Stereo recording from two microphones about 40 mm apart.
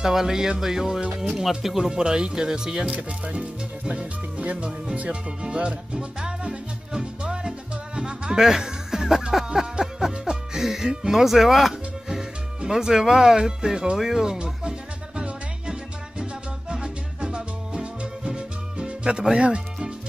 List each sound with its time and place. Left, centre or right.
0.0 s music: centre
1.9 s speech: centre
6.4 s music: right
10.1 s speech: centre
12.1 s speech: centre
13.9 s music: centre
19.3 s speech: right